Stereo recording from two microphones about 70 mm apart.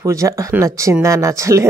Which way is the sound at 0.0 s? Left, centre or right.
Right.